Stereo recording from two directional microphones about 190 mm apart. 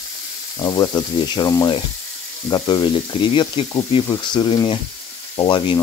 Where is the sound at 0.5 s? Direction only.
20° left (ahead or behind).